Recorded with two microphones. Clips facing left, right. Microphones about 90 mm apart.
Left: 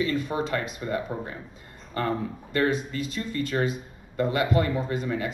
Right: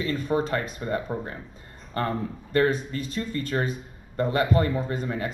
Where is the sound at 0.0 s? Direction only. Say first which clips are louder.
Right 1 dB; 35° right (ahead or behind).